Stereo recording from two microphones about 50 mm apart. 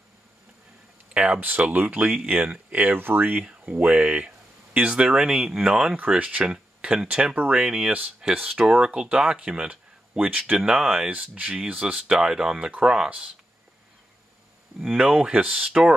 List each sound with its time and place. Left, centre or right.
1.1 s speech: centre
1.6 s speech: right
3.6 s speech: right
6.1 s speech: right
6.4 s speech: centre
11.1 s speech: right
11.6 s speech: centre
15.0 s speech: centre